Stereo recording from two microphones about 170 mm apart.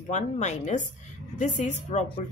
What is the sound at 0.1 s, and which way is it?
Speech, 45° left (ahead or behind).